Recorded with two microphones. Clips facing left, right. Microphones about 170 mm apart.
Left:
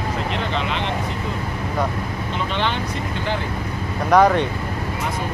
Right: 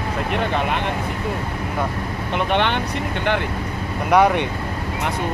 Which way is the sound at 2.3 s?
60° right (ahead or behind).